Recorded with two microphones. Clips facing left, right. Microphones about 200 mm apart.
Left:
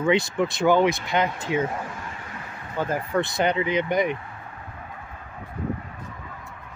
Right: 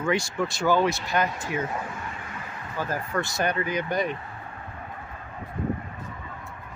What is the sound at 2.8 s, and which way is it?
Speech, 25° left (ahead or behind).